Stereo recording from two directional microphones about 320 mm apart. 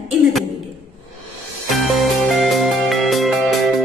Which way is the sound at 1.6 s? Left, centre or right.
Centre.